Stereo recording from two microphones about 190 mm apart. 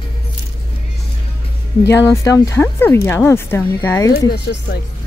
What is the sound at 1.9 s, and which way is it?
Speech, 15° left (ahead or behind).